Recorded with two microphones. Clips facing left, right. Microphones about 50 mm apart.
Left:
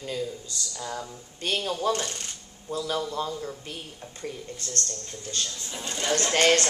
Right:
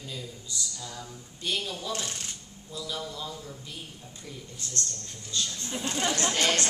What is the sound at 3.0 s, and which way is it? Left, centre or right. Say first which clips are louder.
Speech: left 7 dB; left.